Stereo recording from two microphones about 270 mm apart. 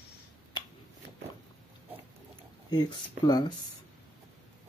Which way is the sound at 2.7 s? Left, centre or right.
Centre.